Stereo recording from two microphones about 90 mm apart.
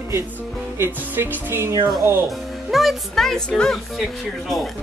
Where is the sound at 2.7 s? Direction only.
Centre (ahead or behind).